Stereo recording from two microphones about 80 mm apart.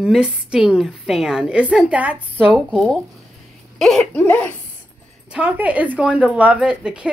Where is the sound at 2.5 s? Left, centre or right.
Centre.